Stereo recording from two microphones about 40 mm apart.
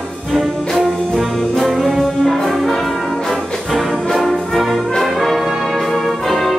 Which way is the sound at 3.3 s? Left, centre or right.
Centre.